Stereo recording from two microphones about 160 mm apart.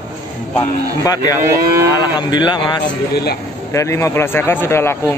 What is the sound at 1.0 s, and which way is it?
Speech, 25° left (ahead or behind).